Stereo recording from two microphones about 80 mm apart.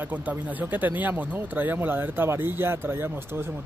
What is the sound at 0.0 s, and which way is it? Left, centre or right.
Speech, right.